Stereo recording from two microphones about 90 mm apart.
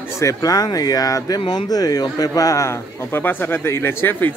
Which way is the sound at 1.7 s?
45° left (ahead or behind).